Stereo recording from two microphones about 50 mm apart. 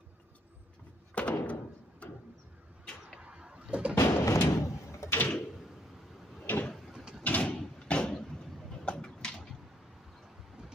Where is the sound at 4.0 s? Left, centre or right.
Left.